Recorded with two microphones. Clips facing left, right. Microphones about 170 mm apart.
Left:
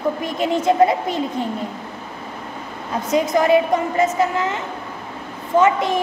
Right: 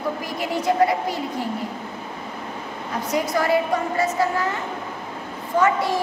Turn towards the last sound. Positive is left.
turn(degrees=20)  # may be behind; listen again after turning